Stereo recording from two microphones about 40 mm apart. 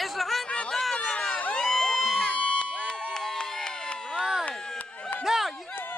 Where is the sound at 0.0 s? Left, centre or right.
Centre.